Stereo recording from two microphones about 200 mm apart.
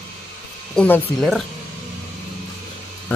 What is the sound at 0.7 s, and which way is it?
Speech, 5° left (ahead or behind).